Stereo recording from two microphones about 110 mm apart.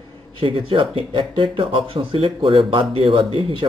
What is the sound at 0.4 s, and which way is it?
Speech, 50° right (ahead or behind).